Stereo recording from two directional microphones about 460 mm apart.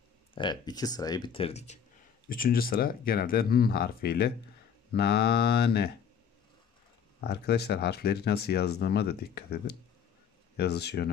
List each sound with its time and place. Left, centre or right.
0.3 s speech: centre
7.2 s speech: left